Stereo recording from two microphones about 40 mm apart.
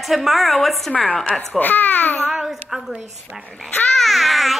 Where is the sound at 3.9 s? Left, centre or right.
Centre.